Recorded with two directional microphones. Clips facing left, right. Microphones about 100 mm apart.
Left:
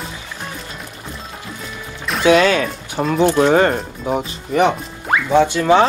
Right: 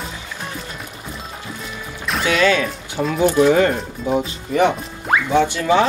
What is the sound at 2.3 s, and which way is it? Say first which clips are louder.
Speech: left 2 dB; 40° left (ahead or behind).